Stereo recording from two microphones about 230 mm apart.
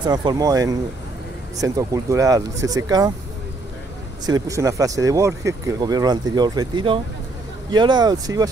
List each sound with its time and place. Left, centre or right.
0.0 s speech: centre
4.3 s speech: centre